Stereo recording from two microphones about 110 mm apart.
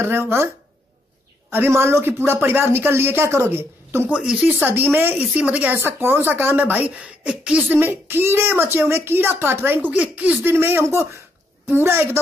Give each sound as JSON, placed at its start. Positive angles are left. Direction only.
{"t": 0.0, "sound": "speech", "side_deg": -20}
{"t": 1.5, "sound": "speech", "side_deg": -20}
{"t": 4.1, "sound": "speech", "side_deg": -10}